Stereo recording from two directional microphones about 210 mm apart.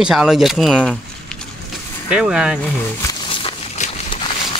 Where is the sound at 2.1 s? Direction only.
5° right (ahead or behind).